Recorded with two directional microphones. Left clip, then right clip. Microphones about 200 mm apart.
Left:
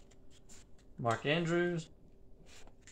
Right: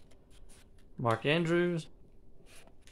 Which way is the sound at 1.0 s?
60° right (ahead or behind).